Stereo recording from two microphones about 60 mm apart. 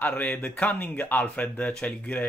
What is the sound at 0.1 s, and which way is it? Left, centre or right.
Speech, left.